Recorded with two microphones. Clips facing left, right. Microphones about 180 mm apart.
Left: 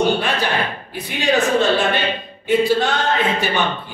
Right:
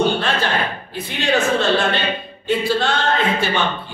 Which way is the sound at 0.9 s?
15° left (ahead or behind).